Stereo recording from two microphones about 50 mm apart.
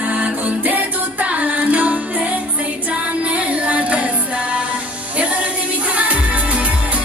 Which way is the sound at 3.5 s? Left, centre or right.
Right.